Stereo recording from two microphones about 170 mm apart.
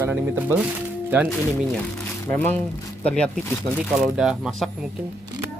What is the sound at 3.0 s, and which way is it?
Speech, 5° left (ahead or behind).